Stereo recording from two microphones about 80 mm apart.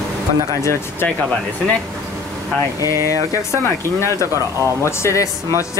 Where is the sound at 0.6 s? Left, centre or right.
Left.